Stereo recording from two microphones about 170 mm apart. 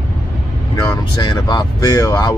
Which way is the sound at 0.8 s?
25° left (ahead or behind).